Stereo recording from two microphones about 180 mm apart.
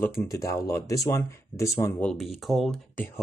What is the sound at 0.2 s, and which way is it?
Speech, 15° left (ahead or behind).